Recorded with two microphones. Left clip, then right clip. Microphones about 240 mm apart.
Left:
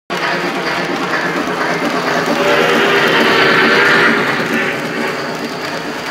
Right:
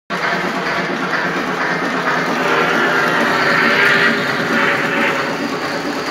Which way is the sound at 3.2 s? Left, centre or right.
Left.